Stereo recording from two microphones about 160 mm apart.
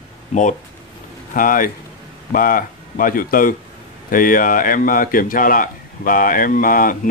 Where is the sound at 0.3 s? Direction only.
50° left (ahead or behind).